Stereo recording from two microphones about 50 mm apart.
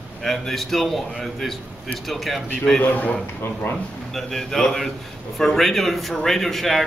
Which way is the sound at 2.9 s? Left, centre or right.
Left.